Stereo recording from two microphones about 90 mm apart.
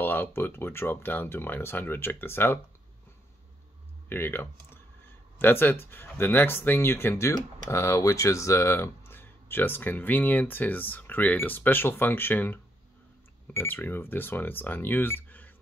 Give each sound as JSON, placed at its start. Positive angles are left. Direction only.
{"t": 0.0, "sound": "speech", "side_deg": 25}
{"t": 4.1, "sound": "speech", "side_deg": 25}